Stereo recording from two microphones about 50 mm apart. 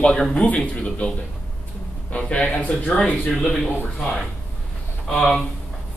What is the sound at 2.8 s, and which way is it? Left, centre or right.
Speech, centre.